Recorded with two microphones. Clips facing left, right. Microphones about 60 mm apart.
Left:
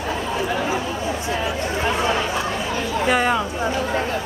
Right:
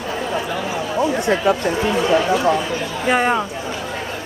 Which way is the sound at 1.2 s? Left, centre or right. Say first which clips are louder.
Right 7 dB; right.